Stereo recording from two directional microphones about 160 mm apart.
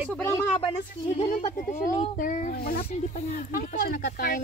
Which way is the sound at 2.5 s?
70° left (ahead or behind).